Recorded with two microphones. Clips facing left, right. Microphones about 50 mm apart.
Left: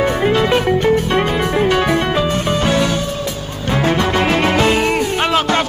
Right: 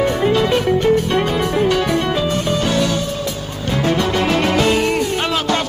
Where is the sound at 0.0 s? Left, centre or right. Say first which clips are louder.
Left 1 dB; left.